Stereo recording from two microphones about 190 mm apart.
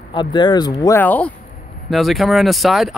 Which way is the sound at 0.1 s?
25° left (ahead or behind).